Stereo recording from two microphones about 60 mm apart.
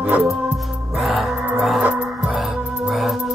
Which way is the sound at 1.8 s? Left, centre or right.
Centre.